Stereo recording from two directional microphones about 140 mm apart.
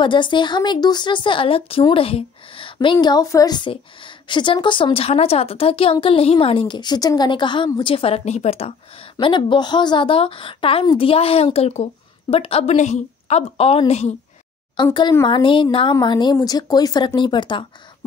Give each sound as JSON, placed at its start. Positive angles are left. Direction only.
{"t": 0.0, "sound": "a woman's voice", "side_deg": 35}
{"t": 9.1, "sound": "a woman's voice", "side_deg": 35}
{"t": 15.2, "sound": "a woman's voice", "side_deg": 35}